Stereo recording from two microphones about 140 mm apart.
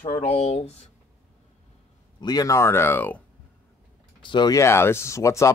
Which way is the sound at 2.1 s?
30° left (ahead or behind).